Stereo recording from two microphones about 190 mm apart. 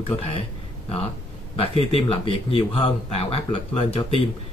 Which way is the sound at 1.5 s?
30° left (ahead or behind).